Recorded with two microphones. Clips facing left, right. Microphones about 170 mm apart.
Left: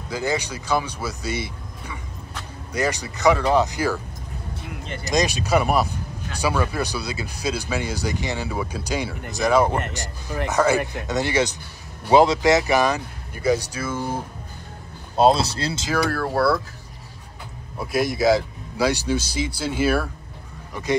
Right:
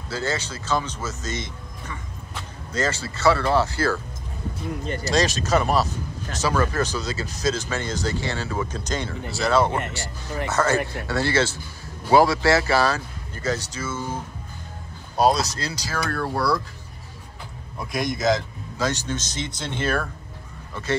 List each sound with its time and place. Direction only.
0.1 s speech: 15° left (ahead or behind)
5.0 s speech: 15° left (ahead or behind)
9.7 s speech: centre (ahead or behind)
9.9 s speech: 15° left (ahead or behind)
15.1 s speech: 25° left (ahead or behind)
16.1 s speech: centre (ahead or behind)
17.9 s speech: 5° left (ahead or behind)